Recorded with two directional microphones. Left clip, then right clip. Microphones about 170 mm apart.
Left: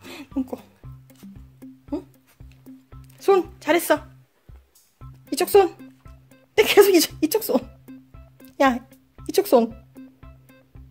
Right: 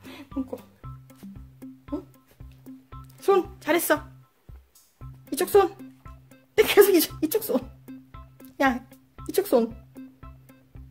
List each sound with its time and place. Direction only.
0.0 s music: 50° left (ahead or behind)
0.8 s music: 5° left (ahead or behind)
3.2 s music: 20° left (ahead or behind)
5.3 s speech: 20° left (ahead or behind)
5.8 s music: centre (ahead or behind)
6.5 s speech: 15° left (ahead or behind)
7.8 s music: centre (ahead or behind)
8.5 s music: 20° left (ahead or behind)
8.9 s music: centre (ahead or behind)
9.3 s music: 20° left (ahead or behind)
9.9 s music: centre (ahead or behind)